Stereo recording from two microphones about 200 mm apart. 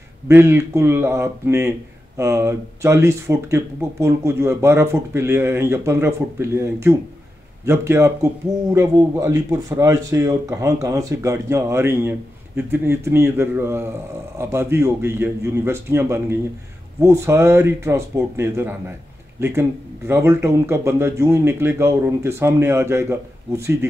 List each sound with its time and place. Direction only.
0.3 s speech: 10° right (ahead or behind)
20.1 s speech: 15° right (ahead or behind)